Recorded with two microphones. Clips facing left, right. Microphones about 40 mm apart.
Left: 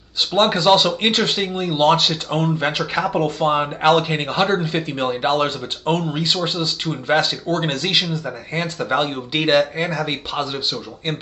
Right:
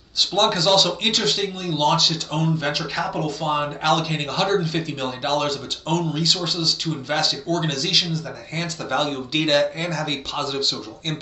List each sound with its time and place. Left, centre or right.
0.2 s a man's voice: left
3.3 s speech: left
3.5 s a man's voice: left